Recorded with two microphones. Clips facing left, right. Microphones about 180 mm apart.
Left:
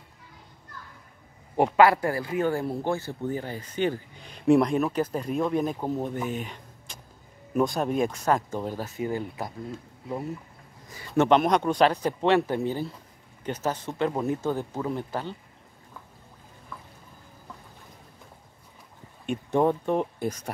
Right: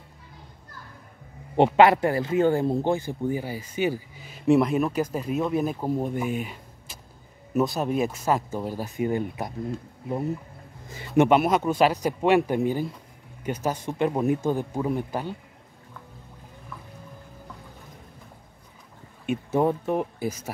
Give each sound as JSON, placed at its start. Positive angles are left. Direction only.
{"t": 1.8, "sound": "speech", "side_deg": -25}
{"t": 10.9, "sound": "a man's voice", "side_deg": -25}
{"t": 11.2, "sound": "speech", "side_deg": -5}
{"t": 19.2, "sound": "speech", "side_deg": -5}